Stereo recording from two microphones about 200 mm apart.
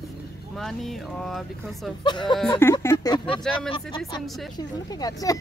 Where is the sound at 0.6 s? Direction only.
Centre (ahead or behind).